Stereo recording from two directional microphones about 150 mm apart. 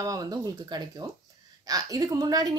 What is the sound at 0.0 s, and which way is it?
A woman's voice, 25° right (ahead or behind).